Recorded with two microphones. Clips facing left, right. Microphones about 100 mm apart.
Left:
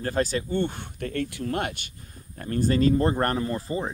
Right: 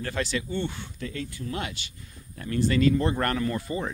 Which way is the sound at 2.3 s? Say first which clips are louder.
Left 1 dB; 40° left (ahead or behind).